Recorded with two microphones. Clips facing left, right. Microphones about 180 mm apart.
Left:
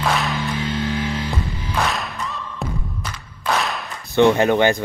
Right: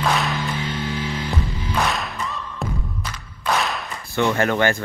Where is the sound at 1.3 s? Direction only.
20° right (ahead or behind).